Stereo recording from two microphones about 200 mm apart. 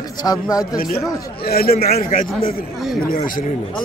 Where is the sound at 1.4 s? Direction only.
50° left (ahead or behind).